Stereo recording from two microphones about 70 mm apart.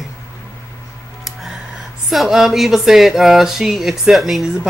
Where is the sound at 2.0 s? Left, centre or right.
Centre.